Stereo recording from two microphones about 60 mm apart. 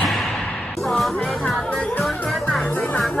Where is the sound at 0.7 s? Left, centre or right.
Centre.